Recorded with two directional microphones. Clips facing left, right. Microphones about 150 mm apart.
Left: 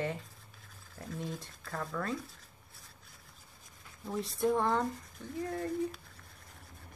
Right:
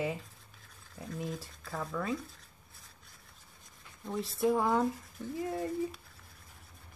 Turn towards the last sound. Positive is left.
turn(degrees=0)  # may be behind; listen again after turning